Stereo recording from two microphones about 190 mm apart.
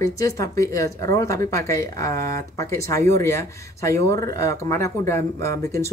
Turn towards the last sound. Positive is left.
turn(degrees=15)  # may be behind; listen again after turning